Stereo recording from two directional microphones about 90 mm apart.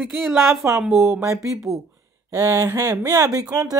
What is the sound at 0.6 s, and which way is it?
Speech, 25° right (ahead or behind).